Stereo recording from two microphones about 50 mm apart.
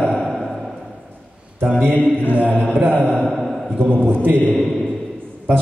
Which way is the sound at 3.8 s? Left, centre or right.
Right.